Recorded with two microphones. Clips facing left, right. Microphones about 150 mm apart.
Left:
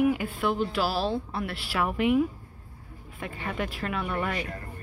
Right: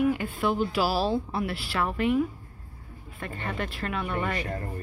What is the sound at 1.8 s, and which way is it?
A woman's voice, 15° left (ahead or behind).